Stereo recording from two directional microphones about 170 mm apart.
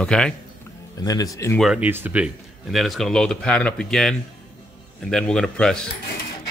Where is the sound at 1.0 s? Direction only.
20° left (ahead or behind).